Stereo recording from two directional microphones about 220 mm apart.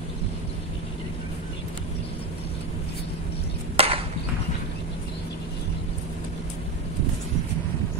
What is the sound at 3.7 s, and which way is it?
Chop, 25° right (ahead or behind).